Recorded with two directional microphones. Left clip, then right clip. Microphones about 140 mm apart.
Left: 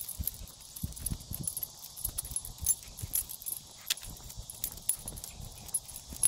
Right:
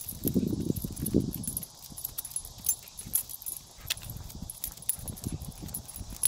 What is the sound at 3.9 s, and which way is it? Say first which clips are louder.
Horse: even; 20° right (ahead or behind).